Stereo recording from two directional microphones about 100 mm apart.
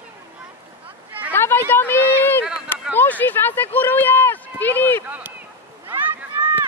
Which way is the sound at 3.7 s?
20° left (ahead or behind).